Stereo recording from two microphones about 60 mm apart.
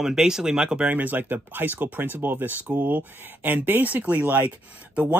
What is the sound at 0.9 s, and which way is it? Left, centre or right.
Speech, right.